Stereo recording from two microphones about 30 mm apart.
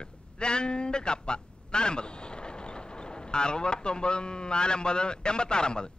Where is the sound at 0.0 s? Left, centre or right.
Left.